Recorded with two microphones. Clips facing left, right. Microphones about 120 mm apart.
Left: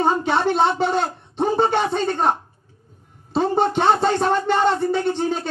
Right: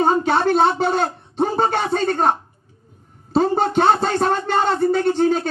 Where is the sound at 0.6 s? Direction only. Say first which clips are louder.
Right 2 dB; 40° right (ahead or behind).